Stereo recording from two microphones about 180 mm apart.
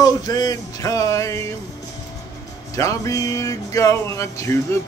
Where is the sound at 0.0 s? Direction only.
20° left (ahead or behind).